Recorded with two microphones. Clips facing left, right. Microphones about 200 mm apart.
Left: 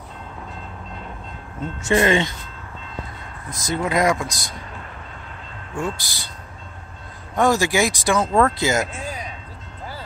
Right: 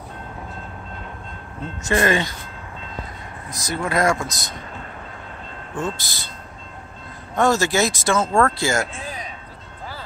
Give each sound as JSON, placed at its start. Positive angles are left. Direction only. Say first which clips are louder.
{"t": 1.9, "sound": "speech", "louder": "left 2 dB", "side_deg": 20}
{"t": 3.5, "sound": "speech", "louder": "left 1 dB", "side_deg": 20}
{"t": 5.8, "sound": "speech", "louder": "even", "side_deg": 15}
{"t": 7.3, "sound": "speech", "louder": "even", "side_deg": 15}